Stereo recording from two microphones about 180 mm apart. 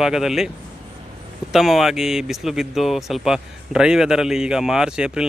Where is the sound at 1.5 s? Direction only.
Centre (ahead or behind).